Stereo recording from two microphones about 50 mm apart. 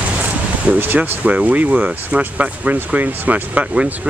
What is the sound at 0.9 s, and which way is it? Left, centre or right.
Speech, right.